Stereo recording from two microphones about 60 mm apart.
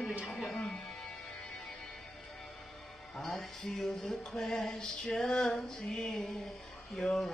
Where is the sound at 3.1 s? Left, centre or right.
Centre.